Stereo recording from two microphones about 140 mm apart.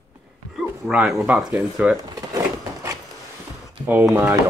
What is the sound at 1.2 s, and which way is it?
Speech, 10° right (ahead or behind).